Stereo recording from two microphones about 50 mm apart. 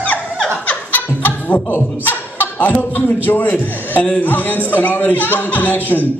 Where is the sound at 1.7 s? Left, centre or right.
Left.